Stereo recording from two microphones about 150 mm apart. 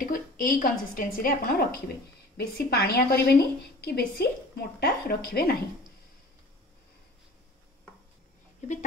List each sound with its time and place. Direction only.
0.0 s a woman's voice: 65° left (ahead or behind); by 5.6 s 90° left